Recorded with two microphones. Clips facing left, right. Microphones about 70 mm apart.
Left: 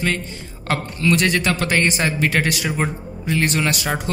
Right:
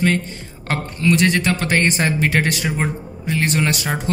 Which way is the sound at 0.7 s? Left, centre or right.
Right.